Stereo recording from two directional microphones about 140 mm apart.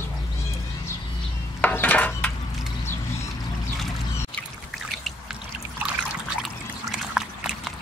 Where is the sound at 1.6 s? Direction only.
10° left (ahead or behind).